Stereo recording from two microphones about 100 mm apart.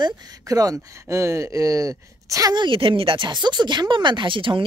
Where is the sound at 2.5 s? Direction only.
55° right (ahead or behind).